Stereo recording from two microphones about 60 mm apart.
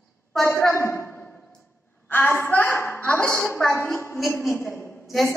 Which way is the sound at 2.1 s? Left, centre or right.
Left.